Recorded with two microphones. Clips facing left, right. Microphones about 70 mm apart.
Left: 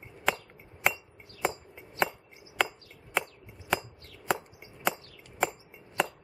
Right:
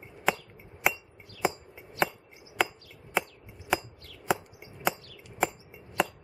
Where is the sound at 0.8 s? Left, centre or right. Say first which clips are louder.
Even; centre.